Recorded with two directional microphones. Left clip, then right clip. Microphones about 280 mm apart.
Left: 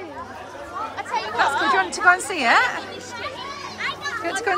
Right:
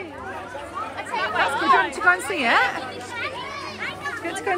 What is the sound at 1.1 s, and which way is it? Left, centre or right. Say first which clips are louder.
Chatter: left 1 dB; left.